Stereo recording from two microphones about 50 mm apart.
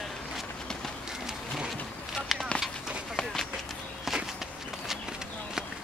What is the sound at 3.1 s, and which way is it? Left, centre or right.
Run, centre.